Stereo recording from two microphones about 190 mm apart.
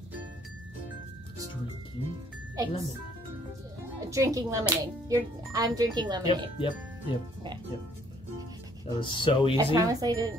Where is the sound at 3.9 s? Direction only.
15° right (ahead or behind).